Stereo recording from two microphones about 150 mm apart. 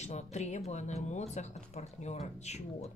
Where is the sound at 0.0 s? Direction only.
50° left (ahead or behind).